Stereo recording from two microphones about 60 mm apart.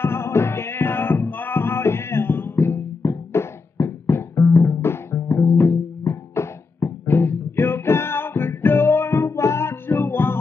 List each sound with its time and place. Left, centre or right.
0.0 s music: left